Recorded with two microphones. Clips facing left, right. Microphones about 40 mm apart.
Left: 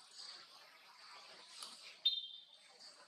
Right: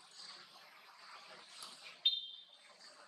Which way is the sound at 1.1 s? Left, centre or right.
Right.